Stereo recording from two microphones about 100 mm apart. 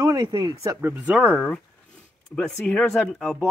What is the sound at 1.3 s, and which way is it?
Speech, 10° left (ahead or behind).